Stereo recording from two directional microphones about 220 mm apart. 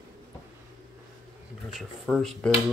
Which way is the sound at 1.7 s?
Centre (ahead or behind).